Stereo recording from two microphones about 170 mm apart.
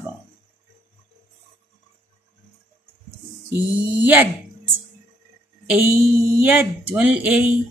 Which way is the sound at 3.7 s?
10° right (ahead or behind).